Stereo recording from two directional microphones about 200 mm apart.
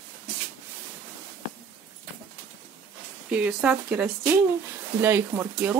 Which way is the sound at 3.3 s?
5° right (ahead or behind).